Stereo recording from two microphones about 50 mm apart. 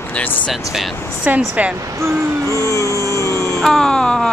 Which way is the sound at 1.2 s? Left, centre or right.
Right.